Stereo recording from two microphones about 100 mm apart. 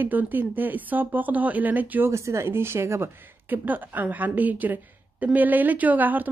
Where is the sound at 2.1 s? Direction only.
30° right (ahead or behind).